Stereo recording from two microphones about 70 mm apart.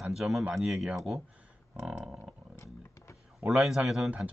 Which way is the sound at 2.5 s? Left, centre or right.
Left.